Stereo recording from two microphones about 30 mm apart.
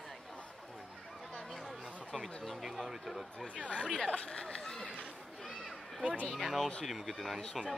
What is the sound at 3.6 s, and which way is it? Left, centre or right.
Speech, left.